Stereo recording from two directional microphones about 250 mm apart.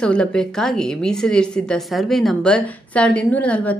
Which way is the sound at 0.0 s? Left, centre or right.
Centre.